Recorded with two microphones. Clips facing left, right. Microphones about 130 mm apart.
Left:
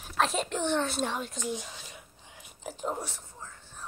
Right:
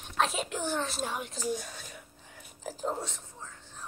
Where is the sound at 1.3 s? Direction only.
40° right (ahead or behind).